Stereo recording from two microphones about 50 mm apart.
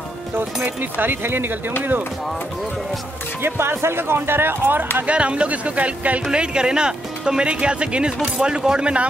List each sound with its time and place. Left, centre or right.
0.7 s speech: right
3.4 s speech: right
5.0 s speech: right